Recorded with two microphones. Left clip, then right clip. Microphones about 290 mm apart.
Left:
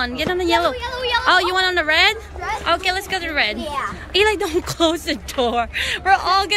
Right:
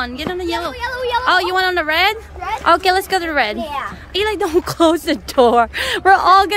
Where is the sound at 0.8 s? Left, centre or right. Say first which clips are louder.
Right 2 dB; right.